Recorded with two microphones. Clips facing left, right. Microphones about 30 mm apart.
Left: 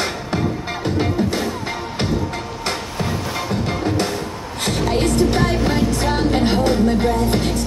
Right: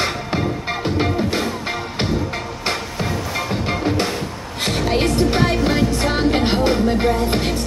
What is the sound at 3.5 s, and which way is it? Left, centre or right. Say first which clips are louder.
Music: even; right.